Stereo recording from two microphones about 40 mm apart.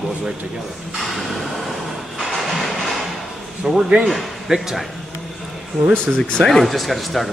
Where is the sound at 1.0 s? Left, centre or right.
Centre.